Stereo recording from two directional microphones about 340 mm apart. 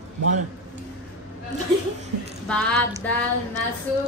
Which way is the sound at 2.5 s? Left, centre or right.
Centre.